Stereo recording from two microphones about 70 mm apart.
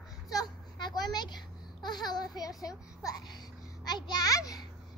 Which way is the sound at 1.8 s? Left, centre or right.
Left.